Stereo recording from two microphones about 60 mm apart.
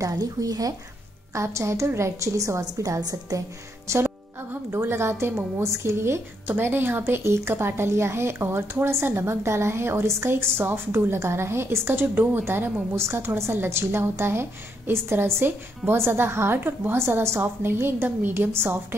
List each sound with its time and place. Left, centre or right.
0.0 s speech: right
1.3 s a woman's voice: right
4.6 s a woman's voice: right
12.9 s a woman's voice: right
16.5 s a woman's voice: right
16.9 s a woman's voice: right